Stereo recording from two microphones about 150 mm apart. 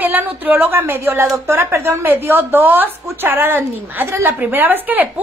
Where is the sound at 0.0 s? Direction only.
10° right (ahead or behind).